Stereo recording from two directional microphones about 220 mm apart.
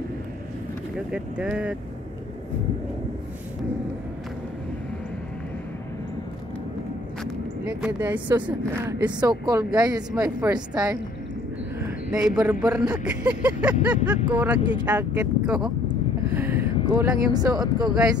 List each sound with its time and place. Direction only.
0.9 s speech: 5° right (ahead or behind)
7.2 s vehicle: 5° right (ahead or behind)
8.5 s a woman's voice: 5° right (ahead or behind)
12.1 s a woman's voice: 5° right (ahead or behind)
16.3 s a sound: 10° right (ahead or behind)
16.8 s a woman's voice: 20° right (ahead or behind)